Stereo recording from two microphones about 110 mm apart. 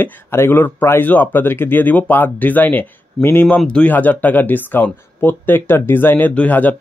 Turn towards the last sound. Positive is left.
turn(degrees=15)  # may be behind; listen again after turning